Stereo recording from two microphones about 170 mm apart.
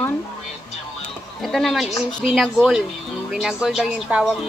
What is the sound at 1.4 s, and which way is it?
Speech, centre (ahead or behind).